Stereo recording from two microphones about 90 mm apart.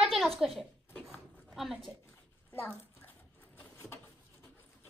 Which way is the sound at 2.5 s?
20° left (ahead or behind).